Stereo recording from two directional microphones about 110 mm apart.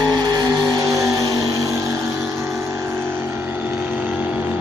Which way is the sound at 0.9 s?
30° right (ahead or behind).